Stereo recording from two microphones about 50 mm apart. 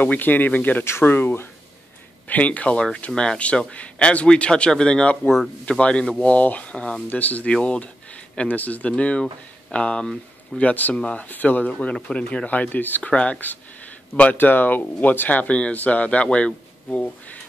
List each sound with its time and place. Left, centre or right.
0.0 s speech: left
0.8 s speech: left
2.2 s speech: left
7.1 s speech: left
7.6 s speech: left
10.6 s speech: left
12.4 s speech: left
13.1 s speech: left
14.3 s speech: left